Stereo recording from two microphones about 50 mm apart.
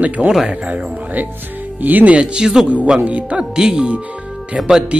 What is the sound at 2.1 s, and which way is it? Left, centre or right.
Speech, centre.